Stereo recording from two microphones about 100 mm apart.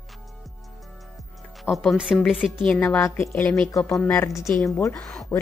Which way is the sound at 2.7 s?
10° left (ahead or behind).